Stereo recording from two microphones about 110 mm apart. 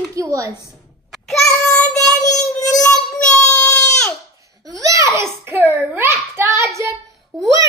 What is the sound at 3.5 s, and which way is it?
Baby cry, 10° left (ahead or behind).